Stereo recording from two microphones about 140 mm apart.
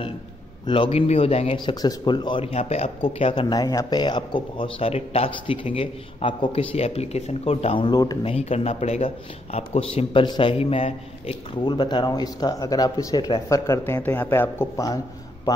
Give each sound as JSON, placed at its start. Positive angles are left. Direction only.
{"t": 0.7, "sound": "speech", "side_deg": 40}
{"t": 1.8, "sound": "speech", "side_deg": 30}
{"t": 11.6, "sound": "speech", "side_deg": 35}